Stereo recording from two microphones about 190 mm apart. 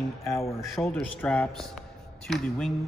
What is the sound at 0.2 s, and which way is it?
Speech, 15° left (ahead or behind).